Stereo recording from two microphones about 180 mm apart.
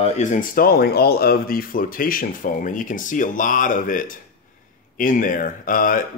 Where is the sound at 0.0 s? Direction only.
45° left (ahead or behind).